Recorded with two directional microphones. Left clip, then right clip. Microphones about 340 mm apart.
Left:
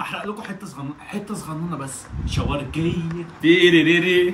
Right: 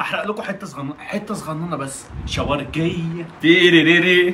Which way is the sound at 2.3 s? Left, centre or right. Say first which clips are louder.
Right 5 dB; centre.